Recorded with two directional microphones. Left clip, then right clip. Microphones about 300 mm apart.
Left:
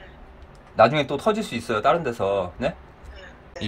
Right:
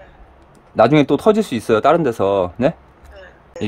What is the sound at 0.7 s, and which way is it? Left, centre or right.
Speech, right.